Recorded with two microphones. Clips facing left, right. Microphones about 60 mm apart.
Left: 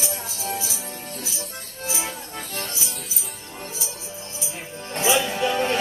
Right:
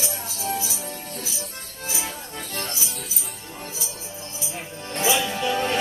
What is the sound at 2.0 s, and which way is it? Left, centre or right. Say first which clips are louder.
Music: left 1 dB; centre.